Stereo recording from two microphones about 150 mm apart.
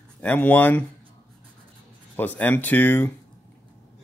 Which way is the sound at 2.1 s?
10° left (ahead or behind).